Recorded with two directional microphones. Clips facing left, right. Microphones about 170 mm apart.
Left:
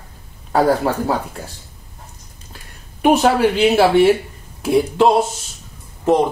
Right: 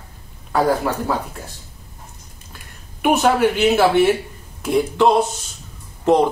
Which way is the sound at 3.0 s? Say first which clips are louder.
Left 2 dB; 35° left (ahead or behind).